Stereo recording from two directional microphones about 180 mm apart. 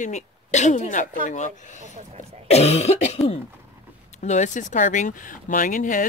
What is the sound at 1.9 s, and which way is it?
Speech, 35° right (ahead or behind).